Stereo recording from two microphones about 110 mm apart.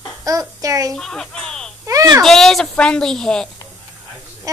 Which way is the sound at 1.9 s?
30° right (ahead or behind).